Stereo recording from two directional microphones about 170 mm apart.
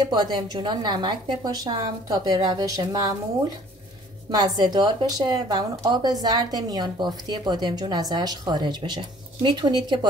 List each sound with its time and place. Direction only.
0.0 s a woman's voice: 25° right (ahead or behind)
4.3 s a woman's voice: 25° right (ahead or behind)